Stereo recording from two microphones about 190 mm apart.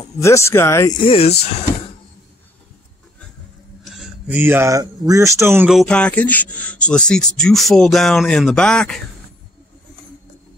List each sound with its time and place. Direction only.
0.0 s speech: 15° left (ahead or behind); by 1.5 s 30° left (ahead or behind)
3.9 s speech: 5° right (ahead or behind)
5.7 s speech: centre (ahead or behind)